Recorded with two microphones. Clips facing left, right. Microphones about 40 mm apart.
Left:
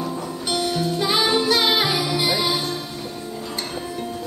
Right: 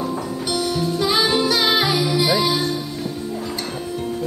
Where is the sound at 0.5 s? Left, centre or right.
Centre.